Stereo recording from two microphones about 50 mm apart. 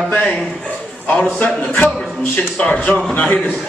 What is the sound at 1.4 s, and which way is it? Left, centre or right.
Speech, left.